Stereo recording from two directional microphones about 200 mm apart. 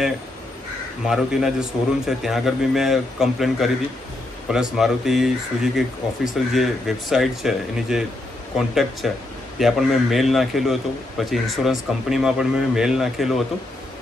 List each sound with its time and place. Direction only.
1.0 s a man's voice: centre (ahead or behind)